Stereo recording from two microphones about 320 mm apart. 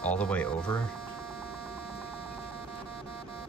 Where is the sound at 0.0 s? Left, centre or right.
Centre.